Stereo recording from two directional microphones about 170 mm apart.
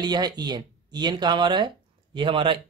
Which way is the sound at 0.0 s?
25° right (ahead or behind).